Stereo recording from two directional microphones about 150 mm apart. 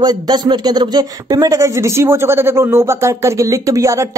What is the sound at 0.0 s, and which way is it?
Speech, 30° right (ahead or behind).